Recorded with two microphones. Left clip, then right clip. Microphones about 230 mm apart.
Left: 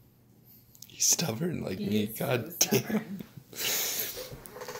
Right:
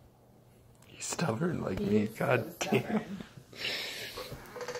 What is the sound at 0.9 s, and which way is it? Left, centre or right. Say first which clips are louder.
Speech: left 6 dB; centre.